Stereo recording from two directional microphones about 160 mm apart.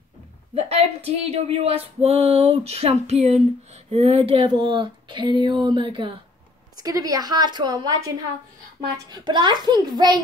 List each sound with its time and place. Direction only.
0.6 s a woman's voice: 40° right (ahead or behind)
9.1 s a woman's voice: 25° right (ahead or behind)